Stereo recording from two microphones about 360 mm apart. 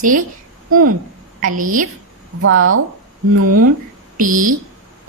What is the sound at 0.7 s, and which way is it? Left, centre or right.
Speech, right.